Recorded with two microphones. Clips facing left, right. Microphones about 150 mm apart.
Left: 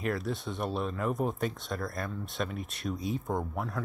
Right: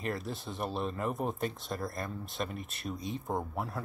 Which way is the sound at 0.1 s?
Centre (ahead or behind).